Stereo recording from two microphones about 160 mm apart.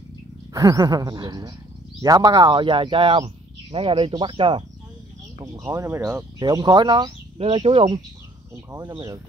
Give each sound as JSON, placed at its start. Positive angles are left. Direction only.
{"t": 0.5, "sound": "speech", "side_deg": -20}
{"t": 5.4, "sound": "speech", "side_deg": -20}
{"t": 8.9, "sound": "speech", "side_deg": -20}